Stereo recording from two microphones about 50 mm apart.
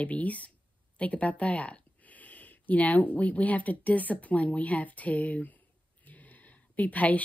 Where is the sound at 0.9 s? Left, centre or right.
Left.